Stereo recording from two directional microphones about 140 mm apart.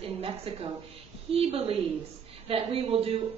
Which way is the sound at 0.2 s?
45° right (ahead or behind).